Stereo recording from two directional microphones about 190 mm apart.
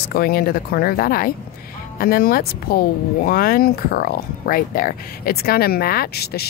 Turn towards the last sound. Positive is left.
turn(degrees=55)  # may be behind; listen again after turning